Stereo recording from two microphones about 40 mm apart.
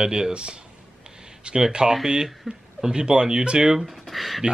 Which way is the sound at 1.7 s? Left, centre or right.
Centre.